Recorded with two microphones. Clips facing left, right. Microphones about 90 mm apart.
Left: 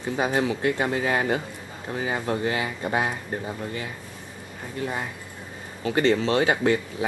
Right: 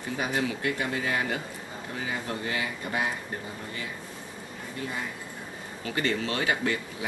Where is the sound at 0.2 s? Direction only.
30° left (ahead or behind).